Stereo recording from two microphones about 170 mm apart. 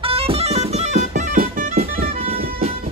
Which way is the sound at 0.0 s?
35° right (ahead or behind).